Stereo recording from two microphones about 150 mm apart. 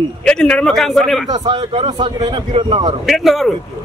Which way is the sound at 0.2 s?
5° left (ahead or behind).